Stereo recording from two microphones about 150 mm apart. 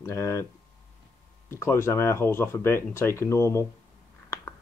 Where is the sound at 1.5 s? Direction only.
15° left (ahead or behind).